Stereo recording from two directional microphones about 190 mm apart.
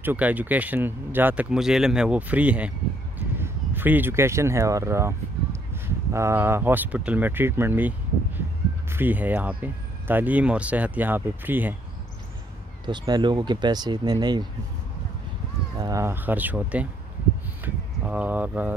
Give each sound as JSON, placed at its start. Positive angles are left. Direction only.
{"t": 0.0, "sound": "speech", "side_deg": -10}
{"t": 8.9, "sound": "speech", "side_deg": -10}
{"t": 12.8, "sound": "speech", "side_deg": -25}
{"t": 15.8, "sound": "speech", "side_deg": -15}